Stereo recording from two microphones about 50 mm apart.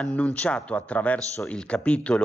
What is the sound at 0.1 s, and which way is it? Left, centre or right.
Speech, left.